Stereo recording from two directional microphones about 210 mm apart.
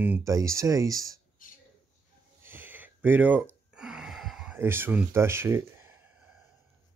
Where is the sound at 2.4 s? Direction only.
10° right (ahead or behind).